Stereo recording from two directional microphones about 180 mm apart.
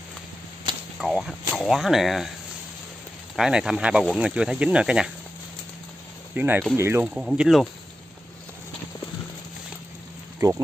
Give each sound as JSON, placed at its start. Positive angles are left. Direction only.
{"t": 0.9, "sound": "speech", "side_deg": 0}
{"t": 3.3, "sound": "speech", "side_deg": -5}
{"t": 6.3, "sound": "speech", "side_deg": -10}
{"t": 10.4, "sound": "speech", "side_deg": -20}